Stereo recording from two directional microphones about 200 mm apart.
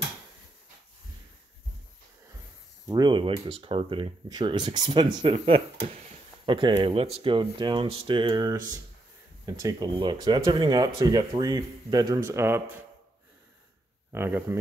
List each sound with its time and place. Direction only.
2.9 s speech: 20° right (ahead or behind)
14.1 s speech: 10° right (ahead or behind)